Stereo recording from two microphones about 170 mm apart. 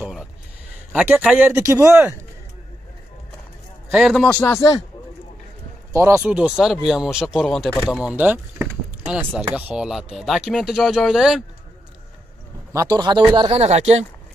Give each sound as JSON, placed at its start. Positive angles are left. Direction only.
{"t": 0.9, "sound": "a man's voice", "side_deg": -5}
{"t": 1.5, "sound": "a man's voice", "side_deg": -15}
{"t": 3.9, "sound": "a man's voice", "side_deg": 0}
{"t": 5.9, "sound": "speech", "side_deg": -15}
{"t": 8.0, "sound": "a sound", "side_deg": -10}
{"t": 9.6, "sound": "speech", "side_deg": -5}
{"t": 12.7, "sound": "speech", "side_deg": -25}